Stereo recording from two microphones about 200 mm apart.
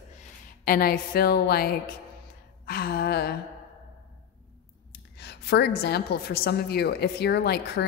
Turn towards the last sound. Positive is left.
turn(degrees=55)  # may be behind; listen again after turning